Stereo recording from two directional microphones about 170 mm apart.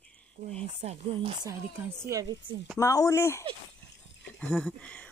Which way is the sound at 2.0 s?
20° right (ahead or behind).